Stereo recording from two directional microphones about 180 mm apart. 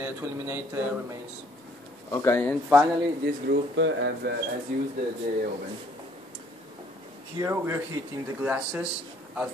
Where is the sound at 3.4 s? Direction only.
80° right.